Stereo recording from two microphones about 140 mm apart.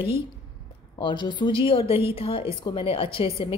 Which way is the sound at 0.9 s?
35° left (ahead or behind).